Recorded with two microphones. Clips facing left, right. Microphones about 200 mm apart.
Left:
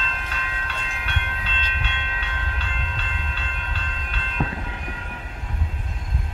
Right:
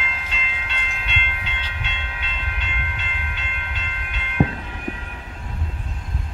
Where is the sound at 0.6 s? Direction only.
20° right (ahead or behind).